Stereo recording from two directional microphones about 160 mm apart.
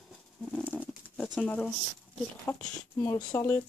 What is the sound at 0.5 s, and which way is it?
Speech, 10° left (ahead or behind).